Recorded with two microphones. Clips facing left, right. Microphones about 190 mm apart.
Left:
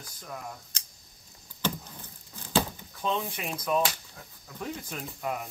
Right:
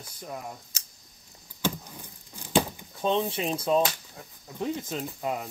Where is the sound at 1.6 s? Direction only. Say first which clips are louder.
Right 2 dB; 10° right (ahead or behind).